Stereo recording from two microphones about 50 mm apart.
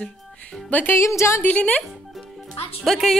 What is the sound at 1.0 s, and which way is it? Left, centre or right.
Speech, left.